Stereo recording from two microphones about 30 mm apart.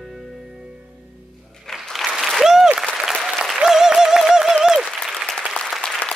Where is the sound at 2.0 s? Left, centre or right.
Centre.